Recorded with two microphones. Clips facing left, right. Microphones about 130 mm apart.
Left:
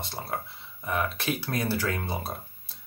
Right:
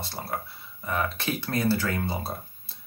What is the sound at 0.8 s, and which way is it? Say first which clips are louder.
Speech: even; 15° left (ahead or behind).